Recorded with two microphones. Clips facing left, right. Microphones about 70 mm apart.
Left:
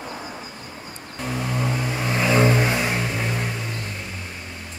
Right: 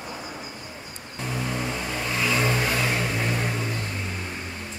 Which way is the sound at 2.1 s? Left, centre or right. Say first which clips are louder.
Left 6 dB; left.